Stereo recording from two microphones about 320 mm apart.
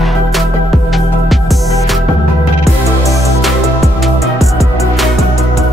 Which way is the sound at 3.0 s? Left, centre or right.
Centre.